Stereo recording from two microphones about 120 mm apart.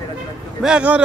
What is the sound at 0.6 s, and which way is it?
Speech, 10° right (ahead or behind).